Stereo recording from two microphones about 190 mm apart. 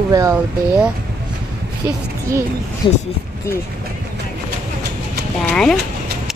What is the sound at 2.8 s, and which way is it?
Speech, 20° left (ahead or behind).